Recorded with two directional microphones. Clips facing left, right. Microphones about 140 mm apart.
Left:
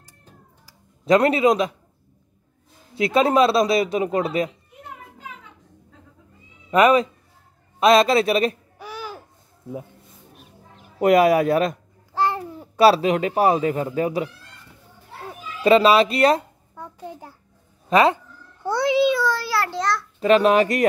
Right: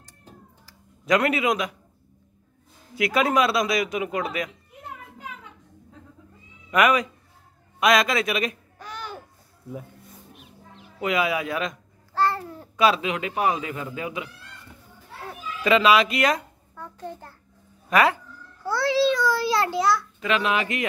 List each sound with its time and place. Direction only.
1.0 s speech: 30° left (ahead or behind)
2.9 s speech: 25° left (ahead or behind)
6.7 s speech: 30° left (ahead or behind)
8.7 s babbling: 5° left (ahead or behind)
10.3 s bird: 45° left (ahead or behind)
12.1 s babbling: 15° left (ahead or behind)
12.7 s speech: 35° left (ahead or behind)
15.6 s speech: 35° left (ahead or behind)
16.7 s a sound: 15° left (ahead or behind)
17.8 s a child's voice: 25° left (ahead or behind)
19.3 s a child's voice: 20° right (ahead or behind)
19.8 s a child's voice: 5° right (ahead or behind)
20.2 s speech: 40° left (ahead or behind)